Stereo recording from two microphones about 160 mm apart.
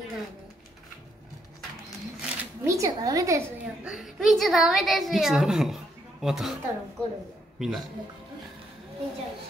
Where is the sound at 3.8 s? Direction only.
Centre (ahead or behind).